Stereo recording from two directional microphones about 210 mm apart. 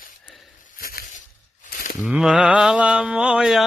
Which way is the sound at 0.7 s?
45° left (ahead or behind).